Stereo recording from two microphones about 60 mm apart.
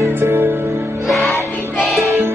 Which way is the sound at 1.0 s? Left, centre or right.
Centre.